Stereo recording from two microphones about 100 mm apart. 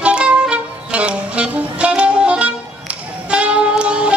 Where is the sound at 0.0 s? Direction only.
10° right (ahead or behind).